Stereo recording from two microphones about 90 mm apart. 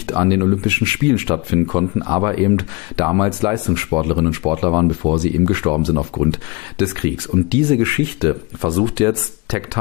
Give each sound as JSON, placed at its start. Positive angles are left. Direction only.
{"t": 0.1, "sound": "speech", "side_deg": -55}
{"t": 5.9, "sound": "speech", "side_deg": -45}